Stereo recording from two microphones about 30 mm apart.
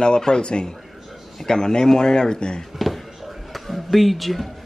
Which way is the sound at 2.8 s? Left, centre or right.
Centre.